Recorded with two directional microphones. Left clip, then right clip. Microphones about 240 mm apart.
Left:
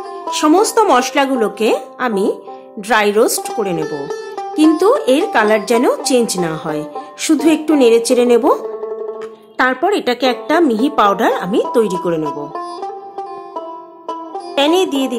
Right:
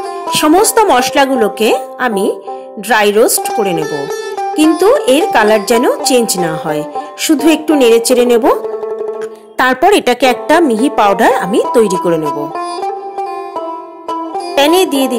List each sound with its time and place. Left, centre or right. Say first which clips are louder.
0.3 s speech: right 3 dB; centre
3.8 s music: right 4 dB; right
4.7 s speech: right 3 dB; centre
9.6 s a woman's voice: right 5 dB; right
10.7 s a woman's voice: right 4 dB; right
11.0 s a woman's voice: right 4 dB; centre
12.2 s music: right 5 dB; right
14.5 s music: right 4 dB; centre